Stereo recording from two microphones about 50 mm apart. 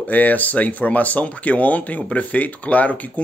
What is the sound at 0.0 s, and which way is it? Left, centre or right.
Speech, left.